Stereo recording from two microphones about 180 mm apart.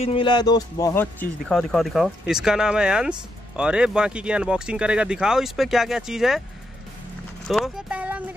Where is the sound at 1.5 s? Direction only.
Centre (ahead or behind).